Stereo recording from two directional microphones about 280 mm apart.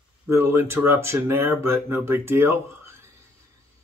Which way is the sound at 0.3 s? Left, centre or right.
Centre.